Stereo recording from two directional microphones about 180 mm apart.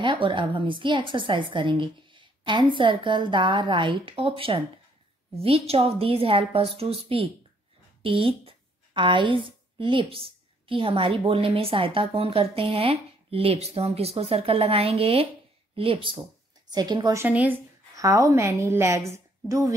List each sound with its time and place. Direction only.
0.0 s a woman's voice: 30° right (ahead or behind)